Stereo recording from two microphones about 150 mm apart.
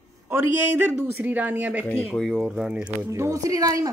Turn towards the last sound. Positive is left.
turn(degrees=-25)  # may be behind; listen again after turning